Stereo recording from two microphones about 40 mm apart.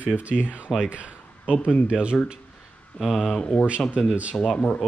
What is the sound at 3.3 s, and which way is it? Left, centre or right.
Speech, left.